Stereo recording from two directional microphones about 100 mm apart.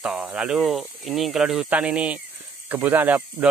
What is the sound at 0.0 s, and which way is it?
Speech, 5° right (ahead or behind).